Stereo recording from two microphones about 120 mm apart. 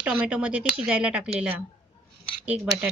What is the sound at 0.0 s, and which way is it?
Speech, 10° right (ahead or behind).